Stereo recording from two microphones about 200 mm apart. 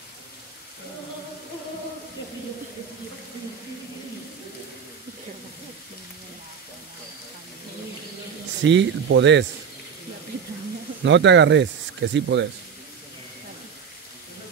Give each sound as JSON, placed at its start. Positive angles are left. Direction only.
{"t": 8.6, "sound": "speech", "side_deg": -65}
{"t": 11.1, "sound": "speech", "side_deg": -60}